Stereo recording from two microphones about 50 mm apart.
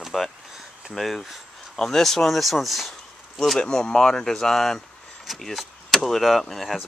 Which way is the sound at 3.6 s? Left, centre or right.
Centre.